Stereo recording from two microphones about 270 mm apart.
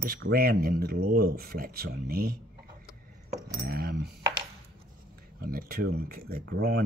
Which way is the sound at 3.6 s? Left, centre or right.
Right.